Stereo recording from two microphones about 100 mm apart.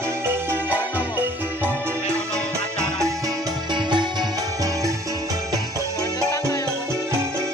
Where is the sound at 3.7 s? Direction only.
50° right (ahead or behind).